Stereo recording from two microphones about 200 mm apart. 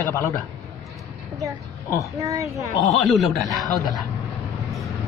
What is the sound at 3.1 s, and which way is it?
Speech, centre (ahead or behind).